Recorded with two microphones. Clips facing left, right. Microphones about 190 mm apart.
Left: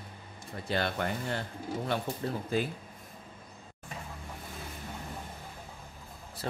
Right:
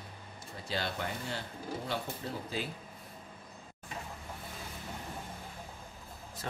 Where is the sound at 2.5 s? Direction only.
50° left (ahead or behind).